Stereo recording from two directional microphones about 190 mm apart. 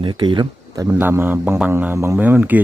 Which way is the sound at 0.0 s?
25° right (ahead or behind).